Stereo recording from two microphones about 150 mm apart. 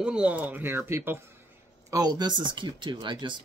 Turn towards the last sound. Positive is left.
turn(degrees=-30)  # may be behind; listen again after turning